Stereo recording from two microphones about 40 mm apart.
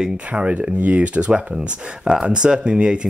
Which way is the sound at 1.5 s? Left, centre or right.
Centre.